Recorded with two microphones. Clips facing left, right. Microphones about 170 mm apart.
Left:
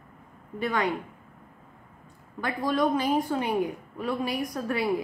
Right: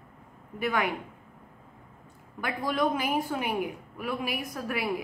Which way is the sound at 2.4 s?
10° right (ahead or behind).